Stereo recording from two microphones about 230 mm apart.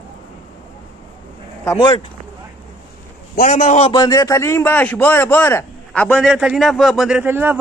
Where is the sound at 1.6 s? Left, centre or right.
Centre.